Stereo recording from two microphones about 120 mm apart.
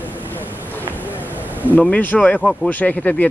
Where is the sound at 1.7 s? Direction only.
15° left (ahead or behind).